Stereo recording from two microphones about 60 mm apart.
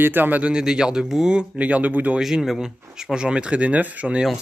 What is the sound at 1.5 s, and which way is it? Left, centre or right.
Speech, right.